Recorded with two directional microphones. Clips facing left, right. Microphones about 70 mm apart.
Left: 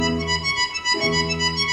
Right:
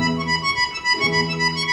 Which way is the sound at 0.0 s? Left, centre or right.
Right.